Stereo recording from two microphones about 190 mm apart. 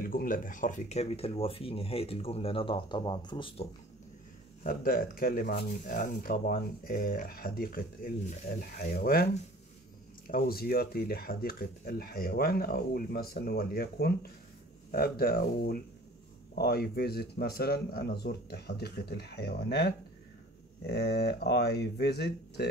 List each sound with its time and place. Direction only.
0.0 s speech: 45° left (ahead or behind); by 3.6 s 25° left (ahead or behind)
4.6 s speech: 50° left (ahead or behind)